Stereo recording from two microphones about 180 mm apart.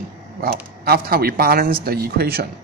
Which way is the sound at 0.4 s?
55° right (ahead or behind).